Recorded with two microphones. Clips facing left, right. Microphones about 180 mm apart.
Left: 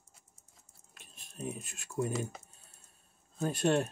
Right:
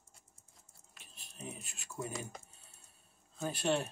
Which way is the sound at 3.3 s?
45° left (ahead or behind).